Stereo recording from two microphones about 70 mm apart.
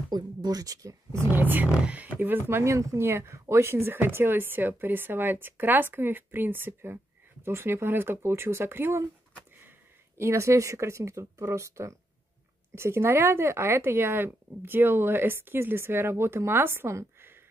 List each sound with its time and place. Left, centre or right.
0.1 s speech: right
1.3 s speech: right